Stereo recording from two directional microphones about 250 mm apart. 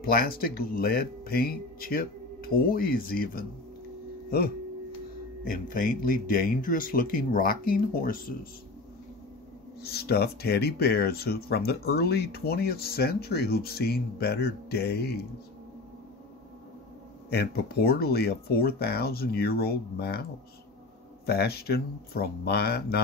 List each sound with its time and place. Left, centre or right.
0.0 s speech: left
5.5 s speech: left
9.8 s speech: left
17.3 s speech: left
21.3 s speech: left